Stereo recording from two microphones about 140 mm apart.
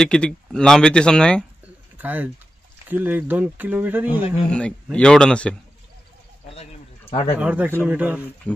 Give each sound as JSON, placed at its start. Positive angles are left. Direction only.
{"t": 0.0, "sound": "speech", "side_deg": 5}
{"t": 2.0, "sound": "speech", "side_deg": -10}
{"t": 4.5, "sound": "speech", "side_deg": 5}
{"t": 6.5, "sound": "a sound", "side_deg": 45}
{"t": 7.3, "sound": "speech", "side_deg": -10}